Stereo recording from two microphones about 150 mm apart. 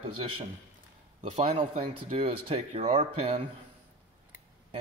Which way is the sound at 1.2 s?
50° right (ahead or behind).